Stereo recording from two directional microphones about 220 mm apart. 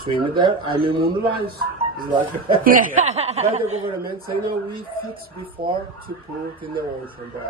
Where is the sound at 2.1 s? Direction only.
20° right (ahead or behind).